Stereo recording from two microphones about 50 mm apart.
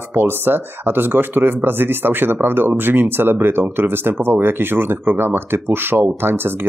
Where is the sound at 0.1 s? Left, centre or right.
Right.